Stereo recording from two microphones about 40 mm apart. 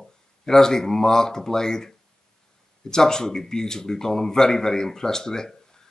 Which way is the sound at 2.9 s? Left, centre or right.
Centre.